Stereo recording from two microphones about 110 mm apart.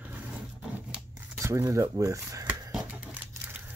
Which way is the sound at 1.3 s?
25° right (ahead or behind).